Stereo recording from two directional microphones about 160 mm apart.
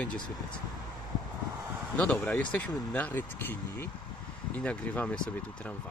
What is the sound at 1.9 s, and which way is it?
Speech, 10° left (ahead or behind).